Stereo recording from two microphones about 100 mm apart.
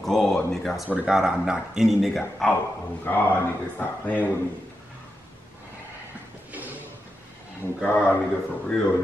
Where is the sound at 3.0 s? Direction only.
20° left (ahead or behind).